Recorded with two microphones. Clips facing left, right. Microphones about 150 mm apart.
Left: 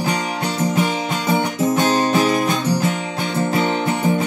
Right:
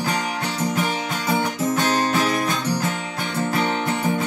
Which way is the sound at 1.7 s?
20° left (ahead or behind).